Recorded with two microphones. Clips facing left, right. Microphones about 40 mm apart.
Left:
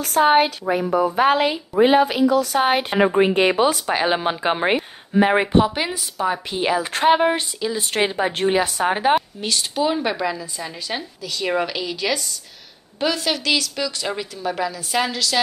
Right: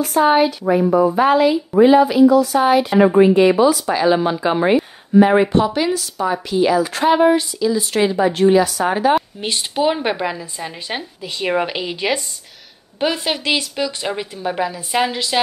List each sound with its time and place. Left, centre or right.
0.0 s a woman's voice: left
5.1 s speech: left
6.5 s a woman's voice: left
9.4 s a woman's voice: right